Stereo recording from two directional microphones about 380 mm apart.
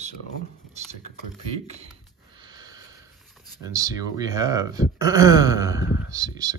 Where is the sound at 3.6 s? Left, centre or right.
Centre.